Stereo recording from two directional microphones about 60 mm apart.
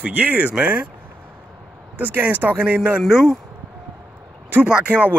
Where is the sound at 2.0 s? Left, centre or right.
Right.